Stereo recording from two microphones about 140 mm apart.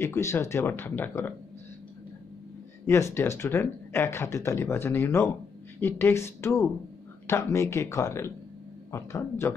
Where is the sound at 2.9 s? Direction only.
20° left (ahead or behind).